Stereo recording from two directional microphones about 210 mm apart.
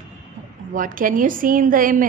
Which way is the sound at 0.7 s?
40° right (ahead or behind).